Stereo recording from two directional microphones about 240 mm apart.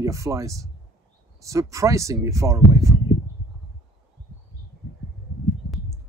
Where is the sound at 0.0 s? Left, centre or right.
Centre.